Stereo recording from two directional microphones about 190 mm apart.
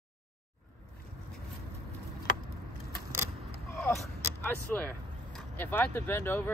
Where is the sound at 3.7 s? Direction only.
Centre (ahead or behind).